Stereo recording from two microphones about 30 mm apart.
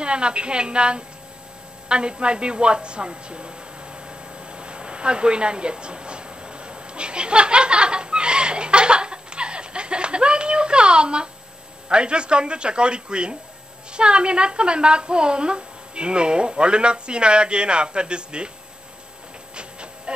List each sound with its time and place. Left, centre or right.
0.0 s a woman's voice: right
1.9 s a sound: right
11.9 s a woman's voice: right